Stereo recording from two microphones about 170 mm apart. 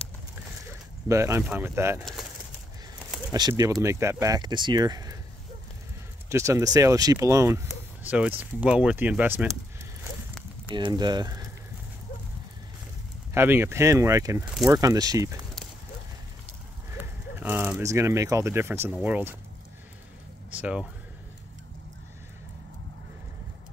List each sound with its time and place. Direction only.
0.7 s a sound: 15° right (ahead or behind)
1.4 s speech: 10° right (ahead or behind)
3.3 s speech: 25° right (ahead or behind)
6.2 s speech: 15° right (ahead or behind)
10.7 s speech: 25° right (ahead or behind)
13.3 s speech: 15° right (ahead or behind)
14.4 s speech: 5° right (ahead or behind)
14.7 s speech: 20° right (ahead or behind)
16.9 s speech: 10° right (ahead or behind)
20.5 s speech: 5° right (ahead or behind)